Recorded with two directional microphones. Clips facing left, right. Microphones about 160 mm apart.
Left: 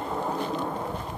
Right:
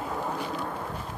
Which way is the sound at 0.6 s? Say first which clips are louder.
Left 3 dB; 15° left (ahead or behind).